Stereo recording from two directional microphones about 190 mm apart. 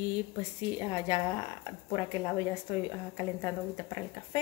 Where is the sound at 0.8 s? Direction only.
20° left (ahead or behind).